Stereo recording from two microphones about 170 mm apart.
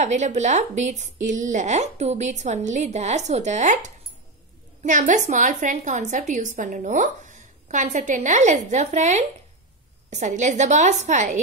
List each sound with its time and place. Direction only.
0.0 s a woman's voice: 45° right (ahead or behind)